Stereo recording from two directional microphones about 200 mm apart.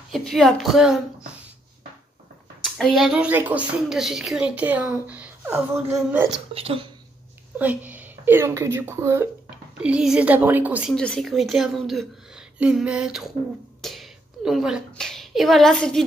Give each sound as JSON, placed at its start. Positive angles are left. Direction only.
{"t": 0.1, "sound": "a woman's voice", "side_deg": 0}
{"t": 2.6, "sound": "a woman's voice", "side_deg": 0}
{"t": 6.5, "sound": "speech", "side_deg": -30}
{"t": 7.5, "sound": "a woman's voice", "side_deg": -10}